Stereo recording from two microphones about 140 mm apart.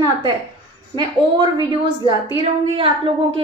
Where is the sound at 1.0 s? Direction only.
30° right (ahead or behind).